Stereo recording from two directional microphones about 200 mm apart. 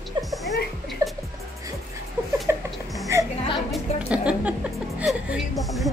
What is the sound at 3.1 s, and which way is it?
Music, 15° right (ahead or behind).